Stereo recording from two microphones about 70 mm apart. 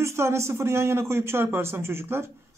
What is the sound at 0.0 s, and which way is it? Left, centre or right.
A man's voice, right.